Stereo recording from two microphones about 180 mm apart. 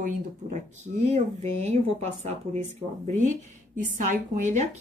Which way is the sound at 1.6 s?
35° right (ahead or behind).